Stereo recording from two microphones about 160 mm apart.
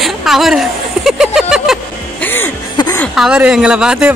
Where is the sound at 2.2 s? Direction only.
15° left (ahead or behind).